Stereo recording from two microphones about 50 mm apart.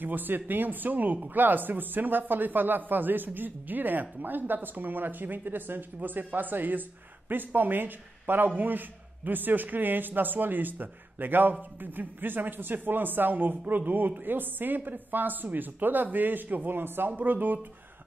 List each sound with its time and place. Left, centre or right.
0.0 s speech: right